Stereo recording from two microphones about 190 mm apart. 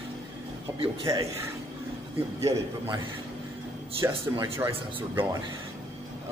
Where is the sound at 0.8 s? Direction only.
30° right (ahead or behind).